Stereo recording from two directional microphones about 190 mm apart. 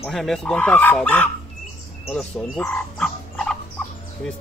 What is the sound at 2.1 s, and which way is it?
Fowl, 5° left (ahead or behind).